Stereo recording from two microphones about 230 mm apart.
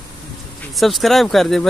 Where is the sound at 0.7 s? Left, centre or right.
Centre.